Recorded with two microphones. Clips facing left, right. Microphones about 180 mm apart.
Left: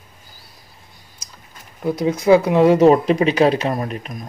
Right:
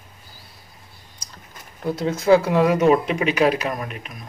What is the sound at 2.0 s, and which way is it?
Speech, 15° left (ahead or behind).